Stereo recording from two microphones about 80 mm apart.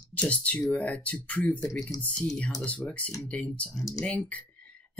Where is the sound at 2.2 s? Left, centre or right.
Centre.